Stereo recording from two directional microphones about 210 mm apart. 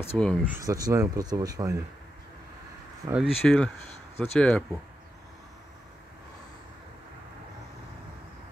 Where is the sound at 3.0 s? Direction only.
5° right (ahead or behind).